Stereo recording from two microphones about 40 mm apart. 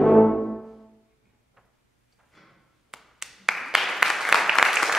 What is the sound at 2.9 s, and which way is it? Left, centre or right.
Finger snapping, centre.